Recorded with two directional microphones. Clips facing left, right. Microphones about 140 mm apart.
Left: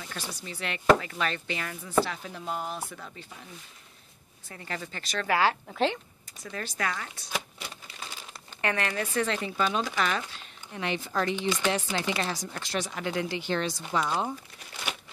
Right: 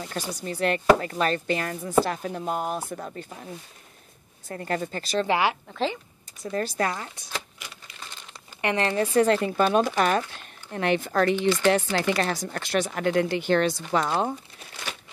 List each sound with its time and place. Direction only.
0.0 s a woman's voice: 40° right (ahead or behind)
4.5 s a woman's voice: 45° right (ahead or behind); by 5.5 s 25° right (ahead or behind)
6.4 s a woman's voice: 35° right (ahead or behind)
8.7 s speech: 30° right (ahead or behind); by 14.3 s 60° right (ahead or behind)